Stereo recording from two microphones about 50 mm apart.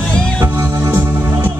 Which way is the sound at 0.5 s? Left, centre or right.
Right.